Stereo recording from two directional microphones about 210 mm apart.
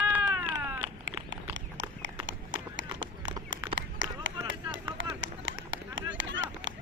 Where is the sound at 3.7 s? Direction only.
65° right (ahead or behind).